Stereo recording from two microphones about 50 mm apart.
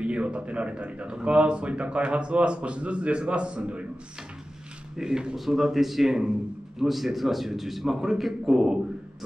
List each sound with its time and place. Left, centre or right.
0.0 s speech: right
4.9 s a man's voice: centre